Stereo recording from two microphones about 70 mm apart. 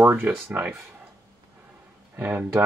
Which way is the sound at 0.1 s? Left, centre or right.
Right.